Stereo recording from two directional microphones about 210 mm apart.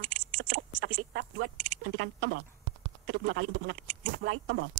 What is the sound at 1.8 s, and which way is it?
A man's voice, 60° right (ahead or behind).